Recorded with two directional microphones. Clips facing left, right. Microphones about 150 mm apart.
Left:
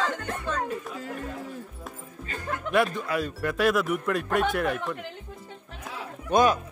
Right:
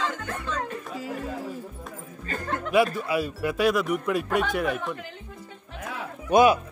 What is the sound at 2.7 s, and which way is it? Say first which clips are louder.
Speech: right 2 dB; 5° right (ahead or behind).